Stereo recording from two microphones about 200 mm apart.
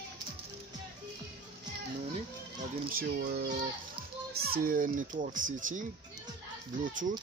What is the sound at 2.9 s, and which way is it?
Speech, 50° right (ahead or behind).